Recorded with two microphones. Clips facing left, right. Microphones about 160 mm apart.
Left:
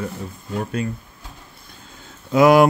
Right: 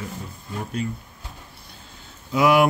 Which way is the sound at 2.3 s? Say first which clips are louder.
Left 5 dB; 45° left (ahead or behind).